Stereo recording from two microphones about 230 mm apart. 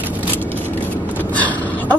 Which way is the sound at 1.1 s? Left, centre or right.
Centre.